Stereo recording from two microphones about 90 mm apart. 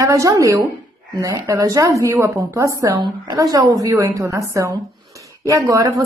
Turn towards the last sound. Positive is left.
turn(degrees=-35)  # may be behind; listen again after turning